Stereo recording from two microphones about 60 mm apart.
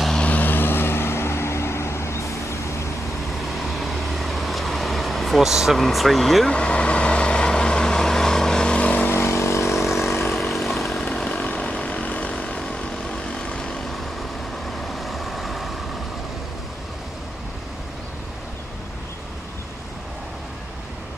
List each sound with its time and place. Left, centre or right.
0.2 s vehicle: left
3.8 s vehicle: centre
5.8 s speech: centre
6.5 s vehicle: centre
9.0 s vehicle: left
10.4 s a sound: centre
11.1 s chainsaw: centre
11.3 s vehicle: left
14.9 s vehicle: centre